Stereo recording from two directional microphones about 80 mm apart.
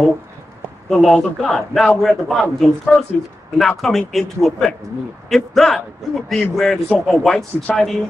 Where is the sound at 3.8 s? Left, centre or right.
Centre.